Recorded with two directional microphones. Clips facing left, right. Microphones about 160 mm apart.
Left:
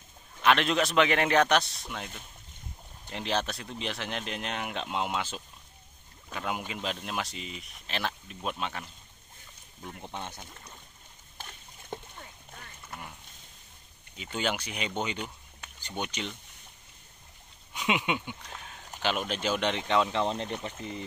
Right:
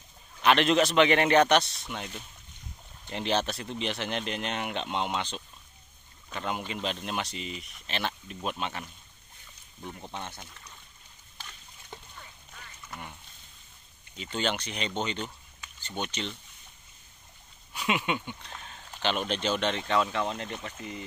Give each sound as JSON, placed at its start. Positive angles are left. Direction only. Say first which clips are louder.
{"t": 0.4, "sound": "speech", "louder": "right 2 dB", "side_deg": 0}
{"t": 3.1, "sound": "speech", "louder": "right 2 dB", "side_deg": 0}
{"t": 9.9, "sound": "speech", "louder": "left 2 dB", "side_deg": 15}
{"t": 11.3, "sound": "a sound", "louder": "left 2 dB", "side_deg": 50}
{"t": 12.5, "sound": "duck", "louder": "even", "side_deg": 50}
{"t": 14.1, "sound": "speech", "louder": "right 1 dB", "side_deg": 5}
{"t": 17.7, "sound": "speech", "louder": "even", "side_deg": 15}